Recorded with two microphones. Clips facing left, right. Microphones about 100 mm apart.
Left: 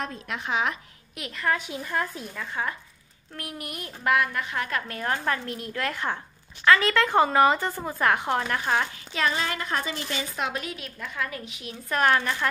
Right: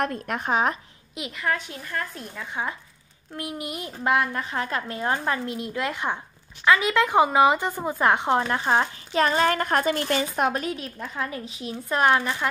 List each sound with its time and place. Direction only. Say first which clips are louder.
0.0 s speech: right 6 dB; 55° right (ahead or behind)
1.1 s a woman's voice: right 3 dB; 15° right (ahead or behind)
1.4 s a woman's voice: even; centre (ahead or behind)
1.7 s a woman's voice: left 3 dB; 15° left (ahead or behind)
2.3 s a woman's voice: right 1 dB; 15° right (ahead or behind)
9.2 s a woman's voice: right 6 dB; 45° right (ahead or behind); by 12.4 s 15° right (ahead or behind)